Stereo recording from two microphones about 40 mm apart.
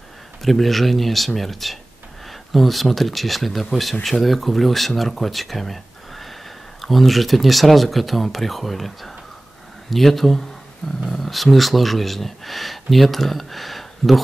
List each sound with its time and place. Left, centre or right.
0.4 s speech: centre